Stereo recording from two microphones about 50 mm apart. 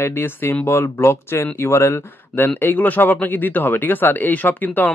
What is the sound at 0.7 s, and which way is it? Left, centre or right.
Speech, left.